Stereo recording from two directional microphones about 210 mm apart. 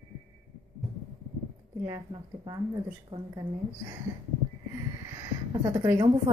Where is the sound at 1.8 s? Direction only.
20° right (ahead or behind).